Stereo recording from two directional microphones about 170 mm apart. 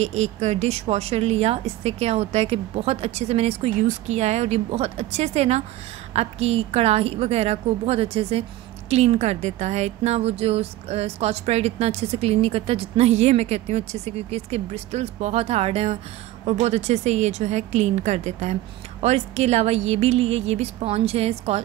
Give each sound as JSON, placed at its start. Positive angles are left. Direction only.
{"t": 0.0, "sound": "a woman's voice", "side_deg": -40}